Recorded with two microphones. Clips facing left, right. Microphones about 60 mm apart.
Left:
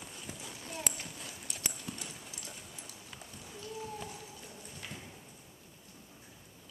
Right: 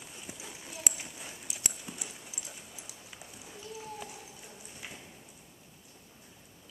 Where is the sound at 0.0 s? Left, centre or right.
Centre.